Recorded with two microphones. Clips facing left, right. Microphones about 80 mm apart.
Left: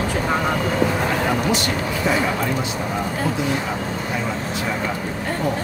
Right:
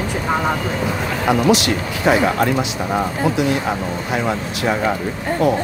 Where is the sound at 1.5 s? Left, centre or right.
Right.